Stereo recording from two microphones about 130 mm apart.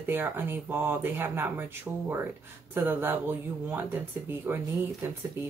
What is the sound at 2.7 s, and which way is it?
Speech, 15° right (ahead or behind).